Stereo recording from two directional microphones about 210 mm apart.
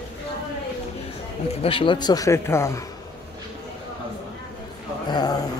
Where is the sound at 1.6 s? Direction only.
25° left (ahead or behind).